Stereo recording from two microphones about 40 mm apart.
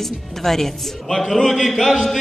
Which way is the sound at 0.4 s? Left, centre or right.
Centre.